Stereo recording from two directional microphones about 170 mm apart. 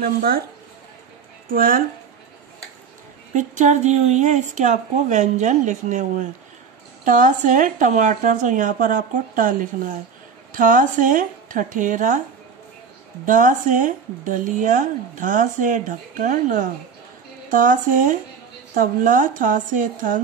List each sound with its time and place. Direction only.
0.0 s speech: 60° right (ahead or behind)
1.5 s speech: 55° right (ahead or behind)
3.3 s speech: 45° right (ahead or behind)
13.2 s speech: 50° right (ahead or behind)